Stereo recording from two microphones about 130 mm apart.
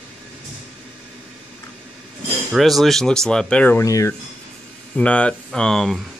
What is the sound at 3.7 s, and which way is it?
Speech, 25° left (ahead or behind).